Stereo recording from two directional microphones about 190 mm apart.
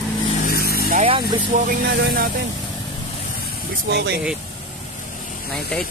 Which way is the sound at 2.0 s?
50° right (ahead or behind).